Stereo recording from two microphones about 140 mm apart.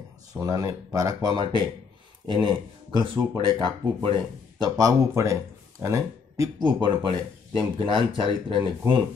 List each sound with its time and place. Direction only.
0.3 s speech: 25° right (ahead or behind)
6.8 s speech: 35° right (ahead or behind)